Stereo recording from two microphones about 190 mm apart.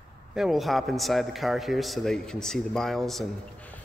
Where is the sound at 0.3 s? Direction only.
Centre (ahead or behind).